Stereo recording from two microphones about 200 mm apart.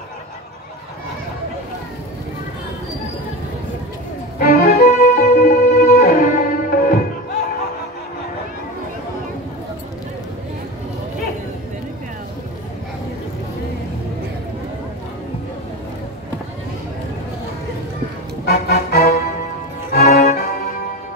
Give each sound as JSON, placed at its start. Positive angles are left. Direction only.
{"t": 4.4, "sound": "music", "side_deg": 45}
{"t": 18.4, "sound": "music", "side_deg": 50}